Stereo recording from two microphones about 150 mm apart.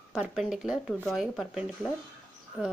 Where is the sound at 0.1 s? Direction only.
5° right (ahead or behind).